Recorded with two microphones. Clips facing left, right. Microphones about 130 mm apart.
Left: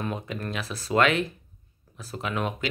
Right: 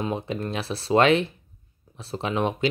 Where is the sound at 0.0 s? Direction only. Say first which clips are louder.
Right 4 dB; 25° right (ahead or behind).